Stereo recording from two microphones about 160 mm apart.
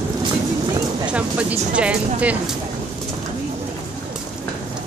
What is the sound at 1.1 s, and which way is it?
Speech, 10° right (ahead or behind).